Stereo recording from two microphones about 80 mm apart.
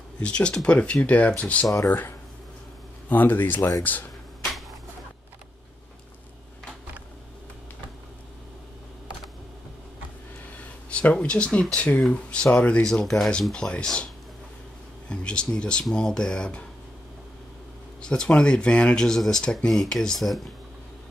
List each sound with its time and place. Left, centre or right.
0.2 s speech: centre
1.7 s speech: left
3.1 s speech: left
4.4 s a sound: centre
10.9 s speech: centre
12.9 s speech: centre
15.0 s speech: centre
18.0 s speech: centre